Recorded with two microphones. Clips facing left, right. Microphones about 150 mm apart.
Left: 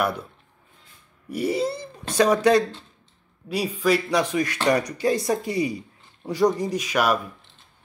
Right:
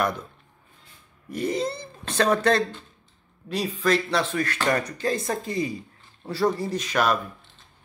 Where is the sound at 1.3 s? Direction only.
10° left (ahead or behind).